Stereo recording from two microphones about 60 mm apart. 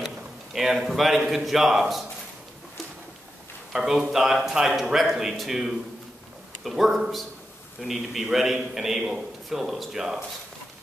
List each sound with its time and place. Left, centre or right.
0.0 s a man's voice: centre
3.7 s a man's voice: centre